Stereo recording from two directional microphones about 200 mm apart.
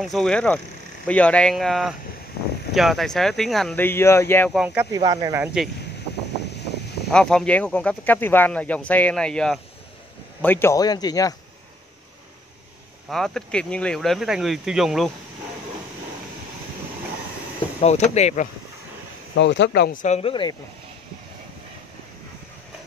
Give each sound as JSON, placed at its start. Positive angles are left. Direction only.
{"t": 0.0, "sound": "speech", "side_deg": 0}
{"t": 4.5, "sound": "speech", "side_deg": -5}
{"t": 7.1, "sound": "speech", "side_deg": 5}
{"t": 13.1, "sound": "speech", "side_deg": 0}
{"t": 17.7, "sound": "speech", "side_deg": 35}
{"t": 19.3, "sound": "speech", "side_deg": 65}